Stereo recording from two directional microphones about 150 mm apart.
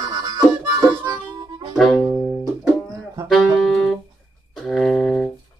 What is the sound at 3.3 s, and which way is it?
Saxophone, centre (ahead or behind).